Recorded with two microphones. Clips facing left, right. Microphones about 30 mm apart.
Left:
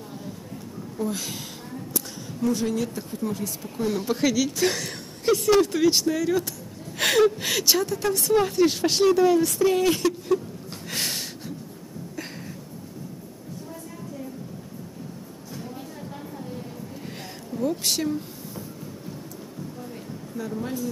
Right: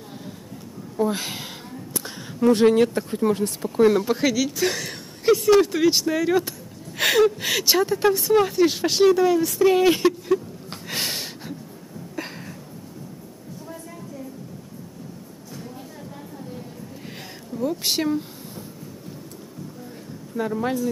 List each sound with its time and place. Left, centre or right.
0.9 s speech: right
2.5 s speech: right
4.0 s speech: centre
7.0 s speech: centre; by 8.2 s right
8.2 s speech: centre
9.7 s speech: centre
10.9 s a sound: centre
17.5 s a sound: centre
17.8 s speech: right
20.4 s speech: right